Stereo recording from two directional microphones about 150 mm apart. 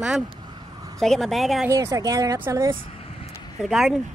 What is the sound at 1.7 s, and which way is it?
Speech, 20° right (ahead or behind).